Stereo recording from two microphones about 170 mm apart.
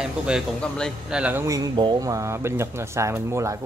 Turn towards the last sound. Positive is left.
turn(degrees=-15)  # may be behind; listen again after turning